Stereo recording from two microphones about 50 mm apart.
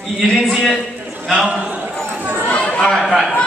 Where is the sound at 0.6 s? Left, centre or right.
Centre.